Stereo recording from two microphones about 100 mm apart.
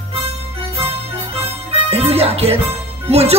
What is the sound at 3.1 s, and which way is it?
Speech, 90° right.